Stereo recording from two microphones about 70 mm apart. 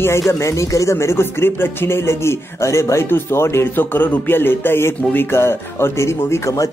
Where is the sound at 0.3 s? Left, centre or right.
Left.